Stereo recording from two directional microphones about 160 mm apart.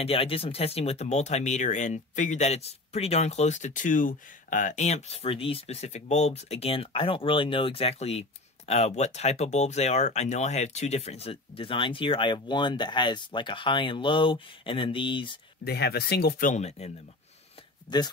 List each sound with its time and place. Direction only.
0.0 s speech: 35° left (ahead or behind)
15.6 s speech: 90° left; by 16.9 s 45° left (ahead or behind)
17.8 s speech: 25° left (ahead or behind)